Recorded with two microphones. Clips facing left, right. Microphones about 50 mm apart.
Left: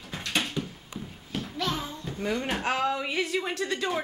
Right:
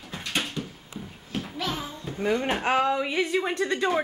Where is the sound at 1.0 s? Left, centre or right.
Centre.